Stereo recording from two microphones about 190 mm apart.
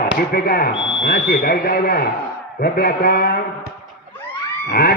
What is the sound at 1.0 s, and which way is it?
A man's voice, 60° left (ahead or behind).